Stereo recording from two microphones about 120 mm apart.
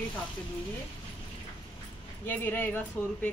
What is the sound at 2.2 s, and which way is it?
Speech, 15° left (ahead or behind).